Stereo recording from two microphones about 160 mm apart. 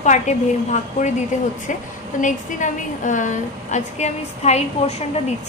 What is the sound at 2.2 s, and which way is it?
A woman's voice, 50° left (ahead or behind).